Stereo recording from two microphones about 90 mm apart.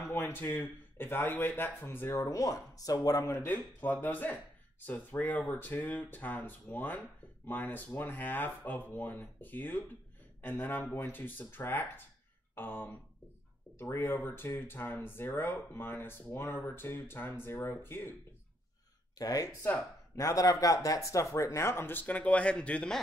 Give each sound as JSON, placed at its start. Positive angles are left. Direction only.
{"t": 0.0, "sound": "speech", "side_deg": 25}
{"t": 3.3, "sound": "speech", "side_deg": 20}
{"t": 19.1, "sound": "speech", "side_deg": 45}